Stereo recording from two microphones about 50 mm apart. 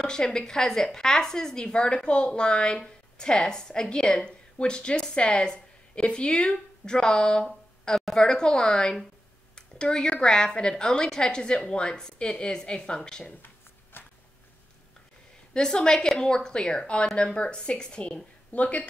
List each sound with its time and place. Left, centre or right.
0.0 s a woman's voice: centre
13.9 s a sound: left
15.5 s a woman's voice: centre